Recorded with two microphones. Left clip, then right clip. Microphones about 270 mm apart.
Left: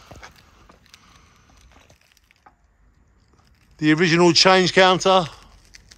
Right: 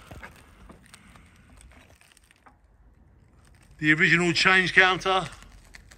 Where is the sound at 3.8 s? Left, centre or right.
Centre.